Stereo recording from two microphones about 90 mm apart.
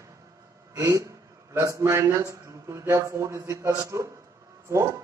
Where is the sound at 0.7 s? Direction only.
35° right (ahead or behind).